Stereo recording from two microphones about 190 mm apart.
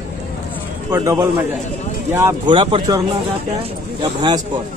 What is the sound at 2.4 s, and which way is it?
Speech, 25° right (ahead or behind).